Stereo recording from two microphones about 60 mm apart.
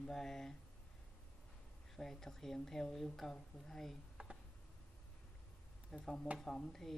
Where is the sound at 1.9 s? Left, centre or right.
Centre.